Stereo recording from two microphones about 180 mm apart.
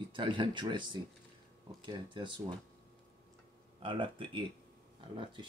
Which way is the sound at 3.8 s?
30° right (ahead or behind).